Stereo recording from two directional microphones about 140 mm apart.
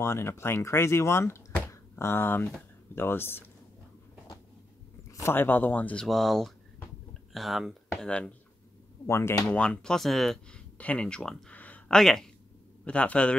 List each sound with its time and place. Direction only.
0.0 s speech: 15° left (ahead or behind)
5.1 s speech: 15° left (ahead or behind)
9.0 s speech: 20° left (ahead or behind)
9.5 s speech: 5° left (ahead or behind)